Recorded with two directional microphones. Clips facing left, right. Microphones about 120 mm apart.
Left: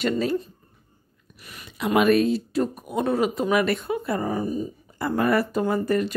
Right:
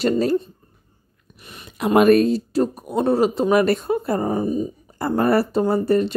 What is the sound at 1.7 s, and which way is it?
Speech, 45° right (ahead or behind).